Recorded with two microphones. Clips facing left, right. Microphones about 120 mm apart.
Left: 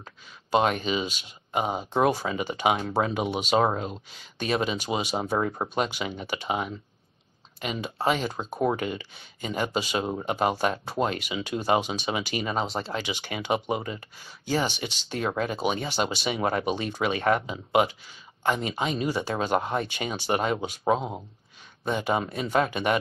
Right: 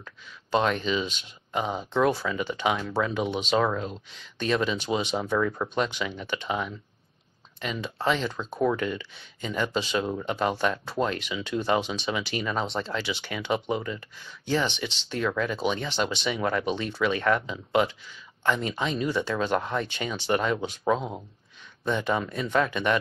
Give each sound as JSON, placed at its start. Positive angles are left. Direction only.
{"t": 0.5, "sound": "speech", "side_deg": 10}
{"t": 5.1, "sound": "speech", "side_deg": 35}
{"t": 5.8, "sound": "speech", "side_deg": 15}
{"t": 21.9, "sound": "speech", "side_deg": 15}